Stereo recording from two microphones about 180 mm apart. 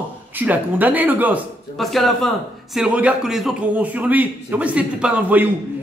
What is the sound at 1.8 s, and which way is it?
A man's voice, centre (ahead or behind).